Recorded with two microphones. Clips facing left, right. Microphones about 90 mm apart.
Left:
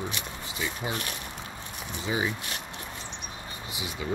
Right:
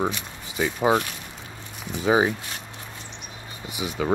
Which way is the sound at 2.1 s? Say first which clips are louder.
Right 11 dB; 70° right (ahead or behind).